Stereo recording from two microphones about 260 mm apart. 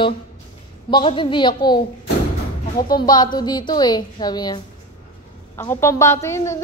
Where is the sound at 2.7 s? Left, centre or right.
Left.